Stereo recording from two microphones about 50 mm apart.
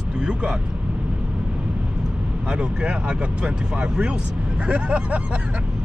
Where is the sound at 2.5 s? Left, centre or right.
Right.